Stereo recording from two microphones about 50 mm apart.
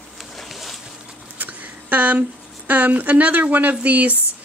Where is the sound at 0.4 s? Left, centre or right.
Centre.